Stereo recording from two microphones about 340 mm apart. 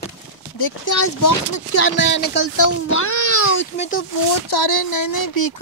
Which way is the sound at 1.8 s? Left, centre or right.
Left.